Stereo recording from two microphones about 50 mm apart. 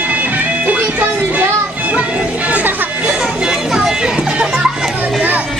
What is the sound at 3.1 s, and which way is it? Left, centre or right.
Chatter, centre.